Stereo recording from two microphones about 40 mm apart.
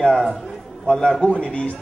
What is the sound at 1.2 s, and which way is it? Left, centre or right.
Speech, left.